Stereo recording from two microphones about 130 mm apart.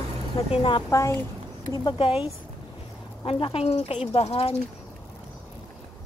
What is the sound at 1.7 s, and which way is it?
Speech, 40° left (ahead or behind).